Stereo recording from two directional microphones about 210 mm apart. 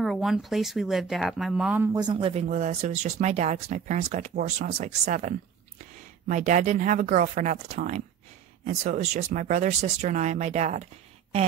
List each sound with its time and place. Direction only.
0.0 s speech: centre (ahead or behind); by 10.8 s 35° right (ahead or behind)